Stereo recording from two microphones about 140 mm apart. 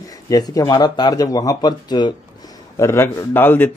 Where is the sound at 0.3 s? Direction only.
25° left (ahead or behind).